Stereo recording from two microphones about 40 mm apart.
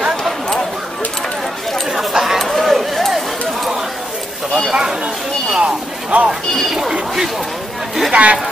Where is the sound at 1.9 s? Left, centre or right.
Centre.